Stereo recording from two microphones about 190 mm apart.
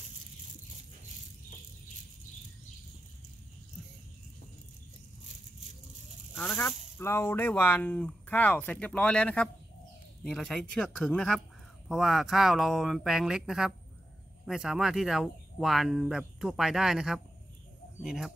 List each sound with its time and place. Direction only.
6.3 s speech: 10° left (ahead or behind)